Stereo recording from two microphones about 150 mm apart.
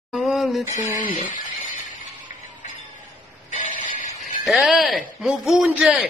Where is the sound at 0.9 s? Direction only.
60° left (ahead or behind).